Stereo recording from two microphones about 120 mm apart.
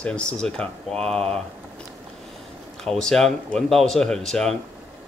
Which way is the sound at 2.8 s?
5° left (ahead or behind).